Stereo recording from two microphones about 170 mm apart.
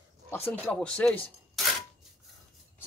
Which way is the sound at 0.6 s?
5° left (ahead or behind).